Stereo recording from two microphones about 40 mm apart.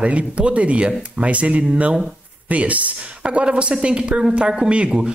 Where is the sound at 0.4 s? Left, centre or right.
Right.